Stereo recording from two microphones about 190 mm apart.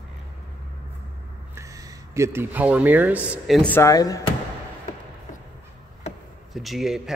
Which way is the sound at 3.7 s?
15° left (ahead or behind).